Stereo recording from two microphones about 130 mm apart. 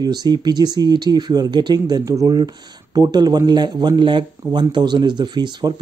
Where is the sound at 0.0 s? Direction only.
30° right (ahead or behind).